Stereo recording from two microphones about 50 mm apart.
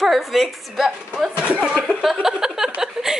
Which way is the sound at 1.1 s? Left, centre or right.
Centre.